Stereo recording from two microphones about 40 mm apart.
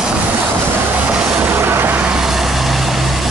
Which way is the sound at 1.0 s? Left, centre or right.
Right.